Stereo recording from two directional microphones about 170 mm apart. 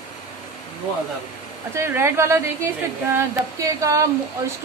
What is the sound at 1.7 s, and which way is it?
A woman's voice, 15° right (ahead or behind).